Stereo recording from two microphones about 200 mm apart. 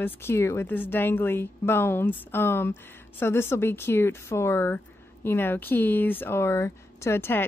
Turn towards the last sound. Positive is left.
turn(degrees=10)  # may be behind; listen again after turning